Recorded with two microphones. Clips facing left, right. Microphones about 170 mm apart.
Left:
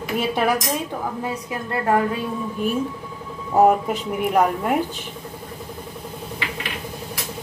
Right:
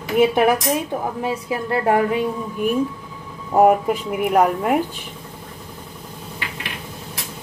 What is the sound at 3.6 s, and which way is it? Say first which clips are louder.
A woman's voice: right 2 dB; 10° right (ahead or behind).